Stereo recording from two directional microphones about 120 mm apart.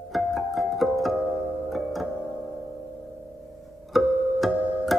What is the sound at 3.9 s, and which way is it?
Music, centre (ahead or behind).